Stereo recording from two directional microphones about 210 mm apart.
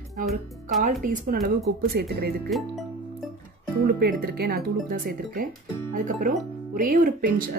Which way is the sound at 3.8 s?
45° right (ahead or behind).